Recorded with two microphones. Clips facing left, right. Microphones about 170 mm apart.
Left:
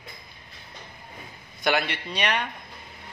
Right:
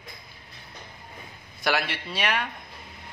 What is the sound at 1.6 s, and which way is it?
Speech, centre (ahead or behind).